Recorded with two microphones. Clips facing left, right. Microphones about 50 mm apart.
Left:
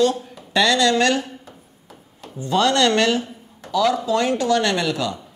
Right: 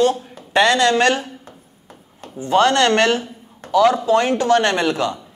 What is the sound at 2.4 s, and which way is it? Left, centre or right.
Speech, right.